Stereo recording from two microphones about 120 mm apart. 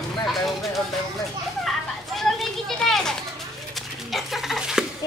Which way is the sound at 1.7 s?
Centre (ahead or behind).